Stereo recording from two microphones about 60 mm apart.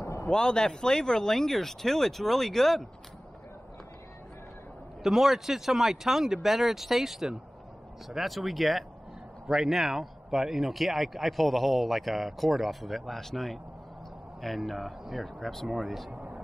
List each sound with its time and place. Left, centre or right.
0.0 s a sound: left
0.3 s speech: centre
5.0 s speech: centre
16.1 s vehicle: centre